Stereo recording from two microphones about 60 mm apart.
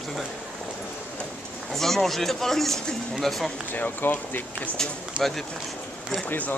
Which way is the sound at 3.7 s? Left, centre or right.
Left.